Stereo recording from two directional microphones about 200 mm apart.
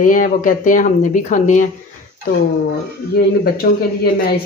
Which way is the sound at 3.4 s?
50° left (ahead or behind).